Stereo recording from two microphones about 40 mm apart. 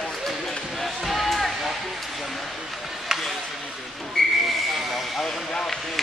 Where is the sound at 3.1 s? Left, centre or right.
Centre.